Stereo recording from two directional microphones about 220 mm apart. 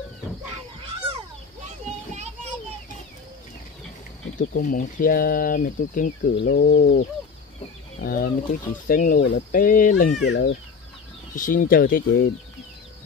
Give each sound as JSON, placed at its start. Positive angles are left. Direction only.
{"t": 4.4, "sound": "speech", "side_deg": 40}
{"t": 10.2, "sound": "speech", "side_deg": 50}
{"t": 11.3, "sound": "speech", "side_deg": 35}